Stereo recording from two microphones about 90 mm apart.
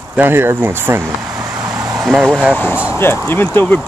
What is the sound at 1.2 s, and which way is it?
Vehicle, 10° right (ahead or behind).